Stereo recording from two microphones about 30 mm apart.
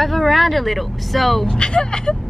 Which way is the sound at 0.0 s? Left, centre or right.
Centre.